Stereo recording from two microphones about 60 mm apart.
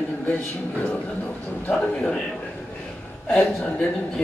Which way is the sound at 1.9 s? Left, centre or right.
Centre.